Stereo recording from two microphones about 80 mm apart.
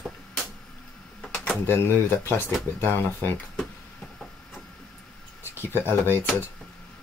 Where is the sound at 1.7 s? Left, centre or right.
Left.